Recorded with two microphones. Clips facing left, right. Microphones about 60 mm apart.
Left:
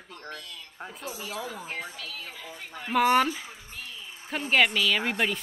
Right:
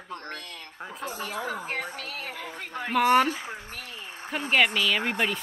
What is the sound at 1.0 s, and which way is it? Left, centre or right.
Speech, right.